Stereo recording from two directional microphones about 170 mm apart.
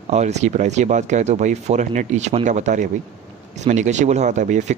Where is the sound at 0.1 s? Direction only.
40° right (ahead or behind).